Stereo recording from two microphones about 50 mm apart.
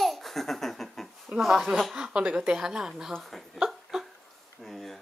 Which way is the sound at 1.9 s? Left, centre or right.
Centre.